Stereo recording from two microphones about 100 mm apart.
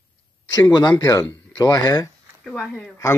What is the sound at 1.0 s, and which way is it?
Speech, 35° left (ahead or behind).